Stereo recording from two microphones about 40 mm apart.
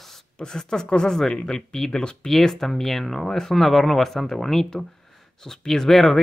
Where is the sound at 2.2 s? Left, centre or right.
Centre.